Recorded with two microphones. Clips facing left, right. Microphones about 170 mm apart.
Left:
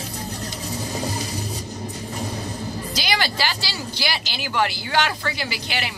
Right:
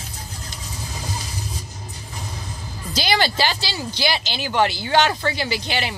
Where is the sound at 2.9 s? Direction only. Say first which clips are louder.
Right 6 dB; 30° right (ahead or behind).